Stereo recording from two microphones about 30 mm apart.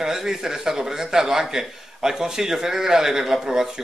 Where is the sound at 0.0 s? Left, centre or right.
Centre.